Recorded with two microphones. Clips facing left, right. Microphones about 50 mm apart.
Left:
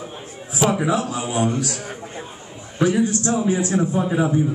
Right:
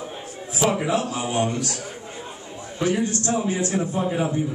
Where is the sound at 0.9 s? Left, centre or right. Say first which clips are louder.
Left 1 dB; left.